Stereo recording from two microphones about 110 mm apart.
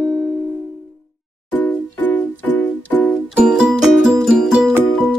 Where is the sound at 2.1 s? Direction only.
15° left (ahead or behind).